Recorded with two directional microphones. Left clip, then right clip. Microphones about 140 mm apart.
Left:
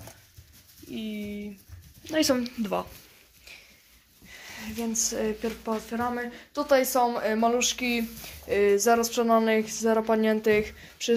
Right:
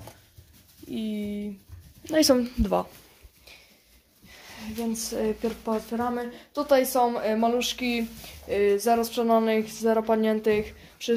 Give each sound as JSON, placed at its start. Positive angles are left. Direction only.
{"t": 0.9, "sound": "a woman's voice", "side_deg": -35}
{"t": 4.4, "sound": "speech", "side_deg": -10}